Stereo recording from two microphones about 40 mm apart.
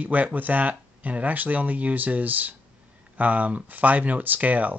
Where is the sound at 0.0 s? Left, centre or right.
Right.